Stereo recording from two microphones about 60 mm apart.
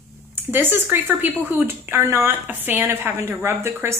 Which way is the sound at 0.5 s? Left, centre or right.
Right.